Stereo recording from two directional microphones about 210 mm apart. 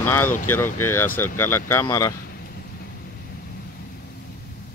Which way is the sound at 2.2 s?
50° left (ahead or behind).